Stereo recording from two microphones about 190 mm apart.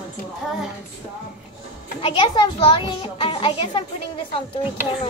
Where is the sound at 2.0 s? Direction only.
25° left (ahead or behind).